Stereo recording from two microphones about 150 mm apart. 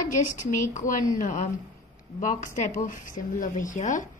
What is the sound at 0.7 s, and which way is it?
Speech, 55° left (ahead or behind).